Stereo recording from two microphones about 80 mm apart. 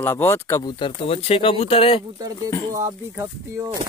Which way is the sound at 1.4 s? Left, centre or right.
Left.